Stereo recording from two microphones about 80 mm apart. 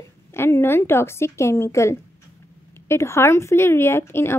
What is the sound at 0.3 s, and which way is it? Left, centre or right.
A woman's voice, left.